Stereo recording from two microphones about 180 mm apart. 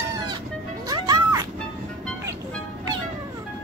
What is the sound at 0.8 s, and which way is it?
Music, 20° right (ahead or behind).